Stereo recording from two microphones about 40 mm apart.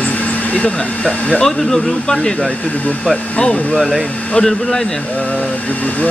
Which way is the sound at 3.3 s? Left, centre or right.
Left.